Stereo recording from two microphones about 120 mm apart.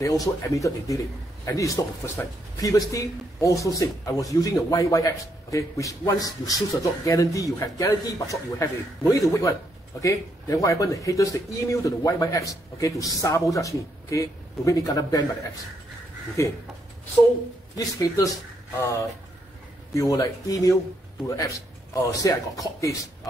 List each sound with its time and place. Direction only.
0.0 s a man's voice: 30° left (ahead or behind)
17.7 s a man's voice: 30° left (ahead or behind)
19.9 s a man's voice: 30° left (ahead or behind)